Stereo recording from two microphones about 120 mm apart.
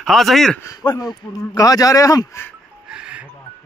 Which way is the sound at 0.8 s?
35° left (ahead or behind).